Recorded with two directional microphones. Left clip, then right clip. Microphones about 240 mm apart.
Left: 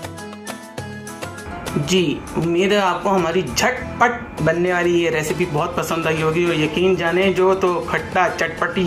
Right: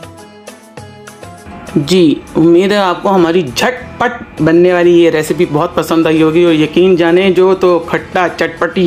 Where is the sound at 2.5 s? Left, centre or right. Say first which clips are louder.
Right 4 dB; right.